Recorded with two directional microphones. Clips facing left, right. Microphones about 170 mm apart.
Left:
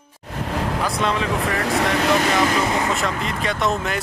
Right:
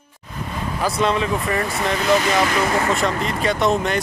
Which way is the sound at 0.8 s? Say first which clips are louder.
Right 6 dB; centre (ahead or behind).